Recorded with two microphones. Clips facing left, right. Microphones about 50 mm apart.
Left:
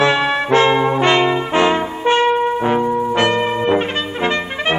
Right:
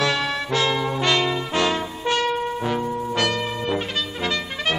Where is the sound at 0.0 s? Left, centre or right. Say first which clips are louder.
Left 7 dB; left.